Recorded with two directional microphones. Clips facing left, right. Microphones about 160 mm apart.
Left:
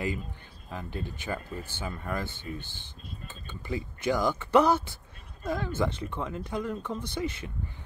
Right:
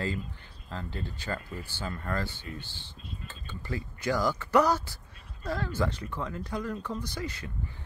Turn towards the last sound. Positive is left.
turn(degrees=25)  # may be behind; listen again after turning